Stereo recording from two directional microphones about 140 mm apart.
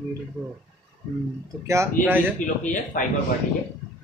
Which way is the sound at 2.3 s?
70° left (ahead or behind).